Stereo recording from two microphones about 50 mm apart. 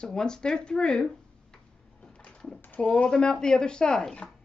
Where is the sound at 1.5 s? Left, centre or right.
Centre.